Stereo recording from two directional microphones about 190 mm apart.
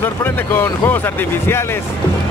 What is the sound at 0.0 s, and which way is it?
Speech, 10° left (ahead or behind).